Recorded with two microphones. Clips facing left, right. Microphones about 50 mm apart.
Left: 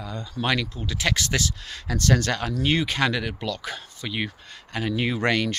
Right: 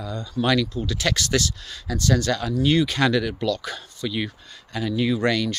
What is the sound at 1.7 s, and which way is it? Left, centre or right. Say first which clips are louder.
Speech: even; left.